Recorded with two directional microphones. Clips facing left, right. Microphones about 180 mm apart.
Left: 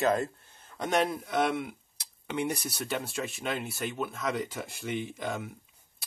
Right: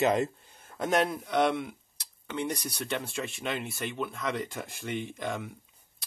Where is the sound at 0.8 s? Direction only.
Centre (ahead or behind).